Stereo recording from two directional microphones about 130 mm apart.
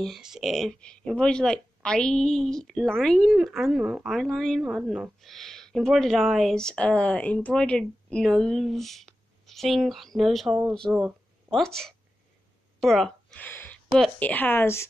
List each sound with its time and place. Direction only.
0.0 s speech: centre (ahead or behind); by 14.9 s 20° left (ahead or behind)